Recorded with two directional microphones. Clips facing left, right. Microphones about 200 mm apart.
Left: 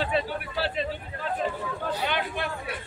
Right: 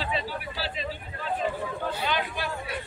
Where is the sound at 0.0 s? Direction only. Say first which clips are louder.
Left 4 dB; 55° left (ahead or behind).